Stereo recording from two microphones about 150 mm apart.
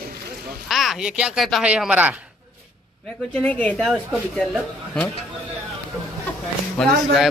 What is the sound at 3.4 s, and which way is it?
A man's voice, 5° left (ahead or behind).